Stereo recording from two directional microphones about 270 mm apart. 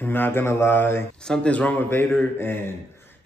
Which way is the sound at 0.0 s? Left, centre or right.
Centre.